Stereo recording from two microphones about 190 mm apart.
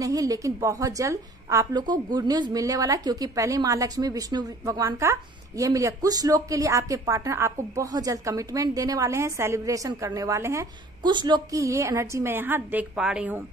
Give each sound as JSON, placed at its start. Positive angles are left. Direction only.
{"t": 0.0, "sound": "speech", "side_deg": -20}